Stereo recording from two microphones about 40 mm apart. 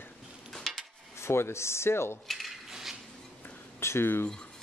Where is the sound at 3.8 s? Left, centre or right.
Left.